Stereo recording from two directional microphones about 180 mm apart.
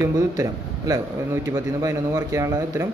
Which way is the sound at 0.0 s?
15° right (ahead or behind).